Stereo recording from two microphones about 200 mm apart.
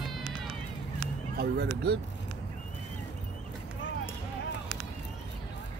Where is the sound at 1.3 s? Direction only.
55° right (ahead or behind).